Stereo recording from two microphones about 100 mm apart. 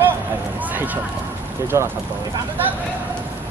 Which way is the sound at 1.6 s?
30° right (ahead or behind).